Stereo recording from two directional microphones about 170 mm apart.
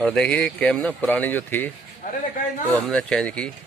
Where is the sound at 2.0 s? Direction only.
50° left (ahead or behind).